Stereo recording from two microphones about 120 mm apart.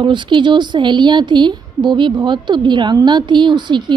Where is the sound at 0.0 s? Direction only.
40° right (ahead or behind).